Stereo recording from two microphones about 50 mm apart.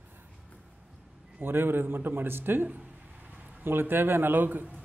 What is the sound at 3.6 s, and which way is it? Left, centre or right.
A man's voice, right.